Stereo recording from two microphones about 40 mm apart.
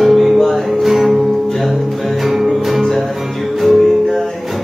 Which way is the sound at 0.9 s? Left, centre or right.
Centre.